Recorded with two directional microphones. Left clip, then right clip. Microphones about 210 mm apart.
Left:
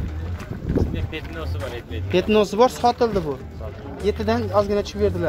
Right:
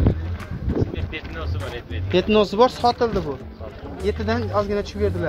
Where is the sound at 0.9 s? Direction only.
40° left (ahead or behind).